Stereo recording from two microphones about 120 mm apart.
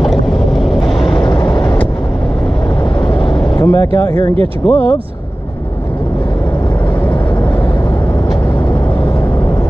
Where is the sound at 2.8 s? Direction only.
40° left (ahead or behind).